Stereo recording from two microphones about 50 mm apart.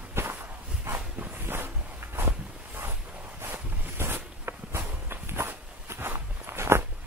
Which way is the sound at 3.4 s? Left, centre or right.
Right.